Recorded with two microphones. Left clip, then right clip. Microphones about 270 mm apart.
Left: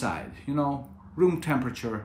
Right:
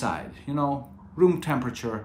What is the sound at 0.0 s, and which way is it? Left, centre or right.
Speech, centre.